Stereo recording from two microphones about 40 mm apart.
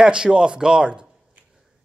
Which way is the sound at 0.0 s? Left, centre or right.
Right.